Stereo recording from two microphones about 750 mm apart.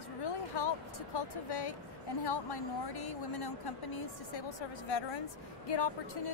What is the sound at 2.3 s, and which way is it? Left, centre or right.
A woman's voice, left.